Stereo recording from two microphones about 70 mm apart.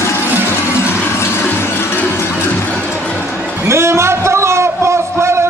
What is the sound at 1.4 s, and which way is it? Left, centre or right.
Music, left.